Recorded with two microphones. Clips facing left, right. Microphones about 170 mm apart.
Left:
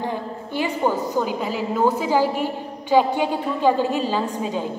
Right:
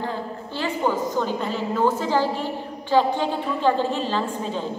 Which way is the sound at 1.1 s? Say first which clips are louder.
Left 1 dB; 10° left (ahead or behind).